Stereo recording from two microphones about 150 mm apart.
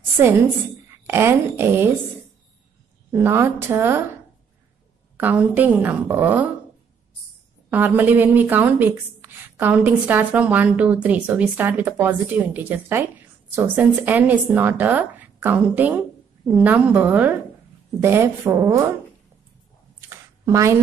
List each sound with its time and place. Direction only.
1.0 s a woman's voice: 15° right (ahead or behind)
3.1 s a woman's voice: 15° right (ahead or behind)
5.1 s a woman's voice: 10° right (ahead or behind)
7.7 s a woman's voice: 10° right (ahead or behind)
20.1 s a sound: 20° right (ahead or behind)